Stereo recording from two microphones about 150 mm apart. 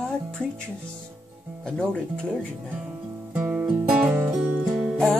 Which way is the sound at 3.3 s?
10° right (ahead or behind).